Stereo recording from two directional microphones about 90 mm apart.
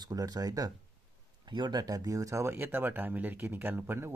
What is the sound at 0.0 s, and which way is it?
Speech, 45° right (ahead or behind).